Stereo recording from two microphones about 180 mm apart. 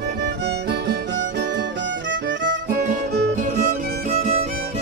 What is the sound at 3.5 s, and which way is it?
Music, 45° right (ahead or behind).